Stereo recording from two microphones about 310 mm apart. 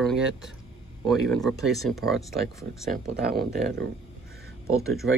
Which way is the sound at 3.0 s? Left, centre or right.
Right.